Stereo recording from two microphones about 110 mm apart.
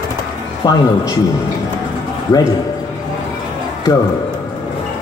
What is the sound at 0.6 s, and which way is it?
Speech, 40° left (ahead or behind).